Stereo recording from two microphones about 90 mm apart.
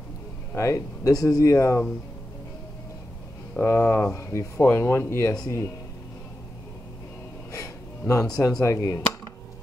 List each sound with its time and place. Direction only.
0.6 s speech: 35° left (ahead or behind)
3.5 s speech: 30° left (ahead or behind)
8.1 s speech: 40° left (ahead or behind)